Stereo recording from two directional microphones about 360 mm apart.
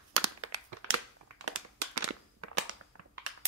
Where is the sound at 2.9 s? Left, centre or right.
Right.